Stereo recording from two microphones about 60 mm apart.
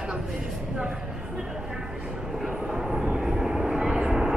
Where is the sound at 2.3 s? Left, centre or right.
Centre.